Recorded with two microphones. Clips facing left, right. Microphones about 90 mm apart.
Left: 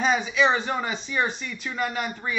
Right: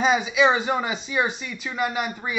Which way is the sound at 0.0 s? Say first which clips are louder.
Right 2 dB; 10° right (ahead or behind).